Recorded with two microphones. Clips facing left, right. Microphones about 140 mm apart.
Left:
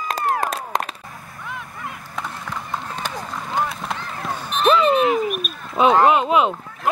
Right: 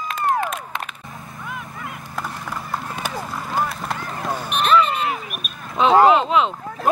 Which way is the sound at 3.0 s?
5° right (ahead or behind).